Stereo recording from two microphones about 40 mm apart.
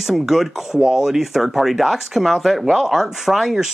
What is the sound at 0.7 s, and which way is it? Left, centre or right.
Speech, centre.